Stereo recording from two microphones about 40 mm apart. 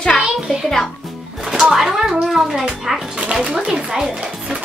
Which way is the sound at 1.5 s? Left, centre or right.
Centre.